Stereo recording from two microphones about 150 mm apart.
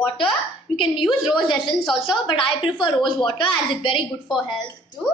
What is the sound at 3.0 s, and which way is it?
A woman's voice, 35° left (ahead or behind).